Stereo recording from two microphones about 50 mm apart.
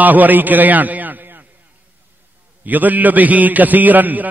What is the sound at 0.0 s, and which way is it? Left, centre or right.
A man's voice, right.